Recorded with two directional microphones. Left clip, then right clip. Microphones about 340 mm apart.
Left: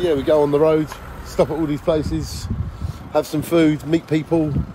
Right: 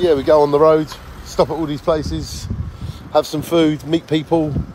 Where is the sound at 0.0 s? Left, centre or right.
Right.